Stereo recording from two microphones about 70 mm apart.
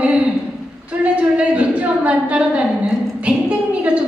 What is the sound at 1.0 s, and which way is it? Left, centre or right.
A woman's voice, centre.